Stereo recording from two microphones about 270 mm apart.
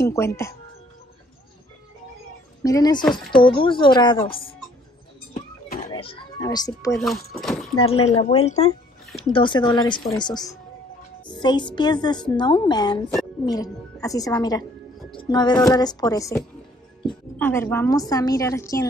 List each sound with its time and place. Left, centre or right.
0.0 s speech: centre
2.6 s speech: centre
3.1 s speech: centre
3.4 s speech: centre
5.9 s a woman's voice: centre
7.0 s speech: centre
7.8 s a woman's voice: left